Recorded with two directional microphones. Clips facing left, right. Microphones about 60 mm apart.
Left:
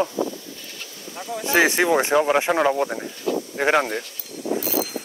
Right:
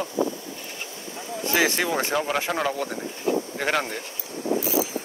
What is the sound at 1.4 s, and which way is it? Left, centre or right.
Speech, left.